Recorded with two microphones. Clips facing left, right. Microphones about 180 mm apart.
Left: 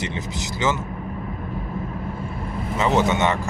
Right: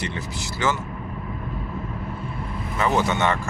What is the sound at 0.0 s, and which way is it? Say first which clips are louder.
Speech: left 2 dB; 20° left (ahead or behind).